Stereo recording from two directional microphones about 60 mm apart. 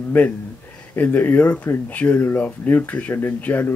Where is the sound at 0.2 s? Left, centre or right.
Left.